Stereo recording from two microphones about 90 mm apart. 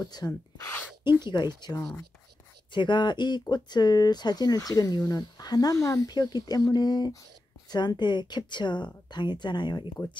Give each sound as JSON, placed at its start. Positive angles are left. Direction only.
{"t": 0.0, "sound": "speech", "side_deg": 45}
{"t": 1.2, "sound": "speech", "side_deg": 55}
{"t": 1.8, "sound": "speech", "side_deg": 15}
{"t": 2.7, "sound": "speech", "side_deg": 60}